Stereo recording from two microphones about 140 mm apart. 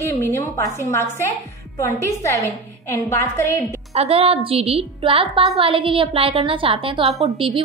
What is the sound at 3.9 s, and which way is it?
A woman's voice, 45° right (ahead or behind).